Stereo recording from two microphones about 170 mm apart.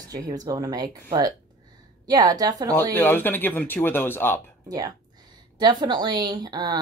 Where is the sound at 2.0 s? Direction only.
20° right (ahead or behind).